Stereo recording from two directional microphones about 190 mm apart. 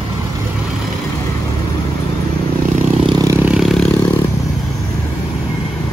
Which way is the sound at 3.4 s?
Centre (ahead or behind).